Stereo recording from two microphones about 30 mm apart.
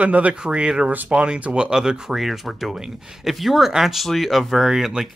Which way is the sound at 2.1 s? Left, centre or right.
Centre.